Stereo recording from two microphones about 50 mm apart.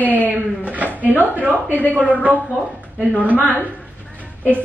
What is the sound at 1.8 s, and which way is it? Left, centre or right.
Speech, right.